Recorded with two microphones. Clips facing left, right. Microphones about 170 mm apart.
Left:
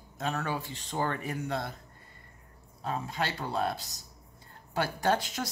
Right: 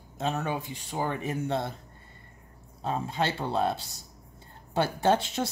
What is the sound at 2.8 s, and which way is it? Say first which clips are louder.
Speech: right 4 dB; 25° right (ahead or behind).